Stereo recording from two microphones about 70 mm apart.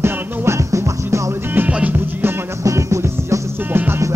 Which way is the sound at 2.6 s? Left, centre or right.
Right.